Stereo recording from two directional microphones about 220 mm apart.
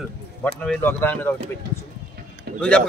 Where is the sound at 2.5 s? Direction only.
45° right (ahead or behind).